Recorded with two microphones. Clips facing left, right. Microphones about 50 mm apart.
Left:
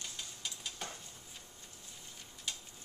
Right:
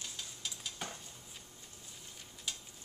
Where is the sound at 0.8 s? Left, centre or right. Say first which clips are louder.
Right 1 dB; centre.